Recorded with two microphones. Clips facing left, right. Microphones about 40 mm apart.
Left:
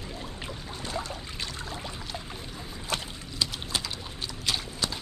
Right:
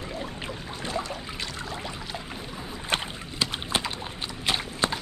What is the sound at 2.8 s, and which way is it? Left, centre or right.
Rowboat, right.